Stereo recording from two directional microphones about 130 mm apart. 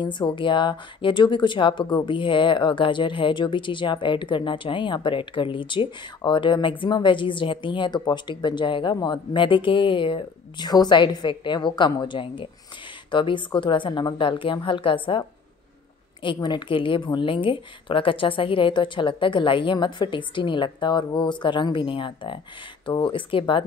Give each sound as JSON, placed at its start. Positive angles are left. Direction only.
{"t": 0.0, "sound": "speech", "side_deg": 35}
{"t": 16.2, "sound": "speech", "side_deg": 35}